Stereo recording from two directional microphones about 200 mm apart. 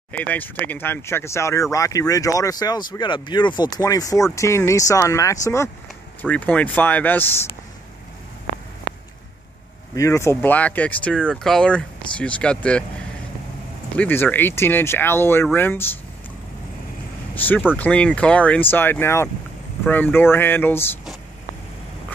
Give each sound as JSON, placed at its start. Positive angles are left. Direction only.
{"t": 0.1, "sound": "speech", "side_deg": 10}
{"t": 9.9, "sound": "speech", "side_deg": 15}
{"t": 13.9, "sound": "speech", "side_deg": 10}
{"t": 17.7, "sound": "speech", "side_deg": 5}